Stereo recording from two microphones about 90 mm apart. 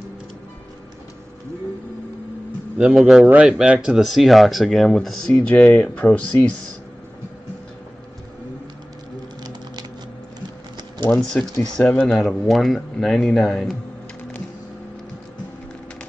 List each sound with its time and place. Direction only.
2.8 s speech: centre (ahead or behind); by 6.5 s 15° left (ahead or behind)
9.4 s typing: 50° right (ahead or behind)
11.4 s speech: 15° left (ahead or behind)
11.7 s speech: 5° left (ahead or behind)